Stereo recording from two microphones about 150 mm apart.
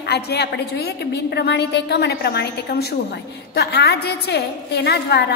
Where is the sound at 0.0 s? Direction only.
90° left.